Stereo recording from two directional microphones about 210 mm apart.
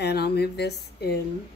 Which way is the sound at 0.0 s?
50° left (ahead or behind).